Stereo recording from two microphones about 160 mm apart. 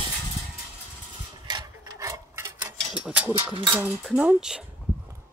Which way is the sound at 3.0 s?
5° right (ahead or behind).